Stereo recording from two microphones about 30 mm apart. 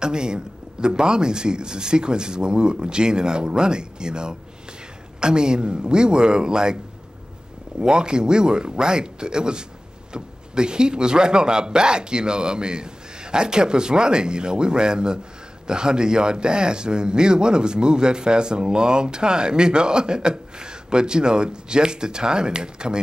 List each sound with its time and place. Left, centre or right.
0.0 s speech: right
7.8 s speech: right